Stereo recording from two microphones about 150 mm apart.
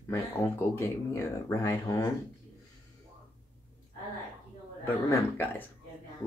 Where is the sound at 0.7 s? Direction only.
15° left (ahead or behind).